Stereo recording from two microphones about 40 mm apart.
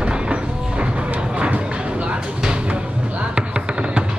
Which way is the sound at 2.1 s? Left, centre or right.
Right.